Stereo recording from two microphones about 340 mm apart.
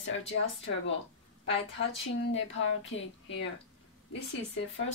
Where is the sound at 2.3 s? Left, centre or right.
Left.